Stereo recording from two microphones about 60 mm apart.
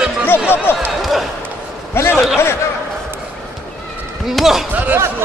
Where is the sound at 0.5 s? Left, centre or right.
Left.